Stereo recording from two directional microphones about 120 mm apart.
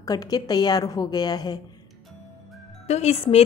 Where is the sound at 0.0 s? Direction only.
35° left (ahead or behind).